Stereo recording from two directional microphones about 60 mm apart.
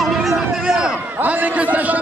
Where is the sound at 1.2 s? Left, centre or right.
Right.